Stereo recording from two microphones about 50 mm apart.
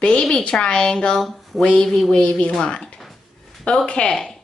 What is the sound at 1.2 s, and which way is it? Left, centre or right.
Speech, centre.